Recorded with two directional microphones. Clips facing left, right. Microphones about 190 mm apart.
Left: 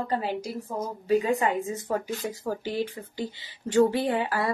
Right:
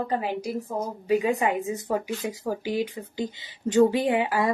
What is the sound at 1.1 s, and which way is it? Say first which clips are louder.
Speech: even; 15° right (ahead or behind).